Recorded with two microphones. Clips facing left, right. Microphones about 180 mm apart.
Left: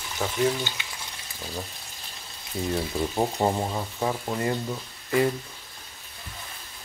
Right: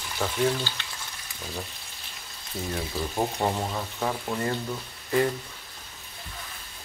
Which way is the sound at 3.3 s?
15° left (ahead or behind).